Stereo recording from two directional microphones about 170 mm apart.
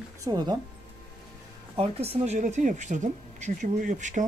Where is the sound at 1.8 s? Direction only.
35° right (ahead or behind).